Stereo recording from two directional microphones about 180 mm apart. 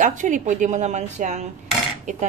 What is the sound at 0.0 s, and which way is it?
Speech, 45° right (ahead or behind).